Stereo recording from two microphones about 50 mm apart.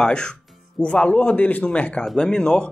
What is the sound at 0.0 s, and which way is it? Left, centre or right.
Speech, centre.